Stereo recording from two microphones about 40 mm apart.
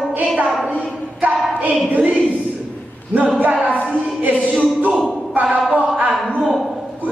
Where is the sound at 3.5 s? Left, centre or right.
Right.